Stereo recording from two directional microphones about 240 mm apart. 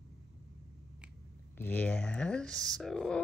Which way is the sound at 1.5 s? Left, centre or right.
Centre.